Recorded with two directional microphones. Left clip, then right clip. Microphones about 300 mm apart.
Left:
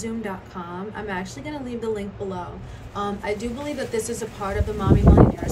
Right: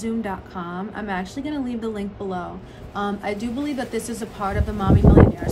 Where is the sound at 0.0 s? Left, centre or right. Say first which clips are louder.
Right 3 dB; centre.